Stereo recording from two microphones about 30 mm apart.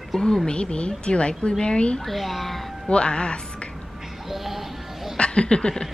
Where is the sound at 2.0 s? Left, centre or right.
Centre.